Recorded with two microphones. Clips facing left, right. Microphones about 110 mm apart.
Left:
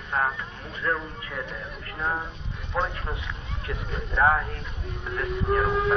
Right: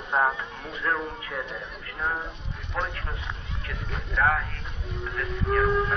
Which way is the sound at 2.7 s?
15° left (ahead or behind).